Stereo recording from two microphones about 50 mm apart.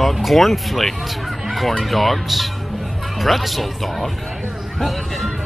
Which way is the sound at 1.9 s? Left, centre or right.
Centre.